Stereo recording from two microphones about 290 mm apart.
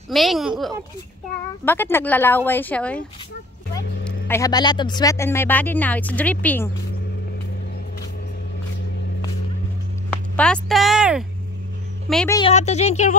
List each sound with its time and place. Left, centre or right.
0.1 s a woman's voice: centre
4.3 s speech: centre
10.3 s a woman's voice: centre
12.4 s speech: left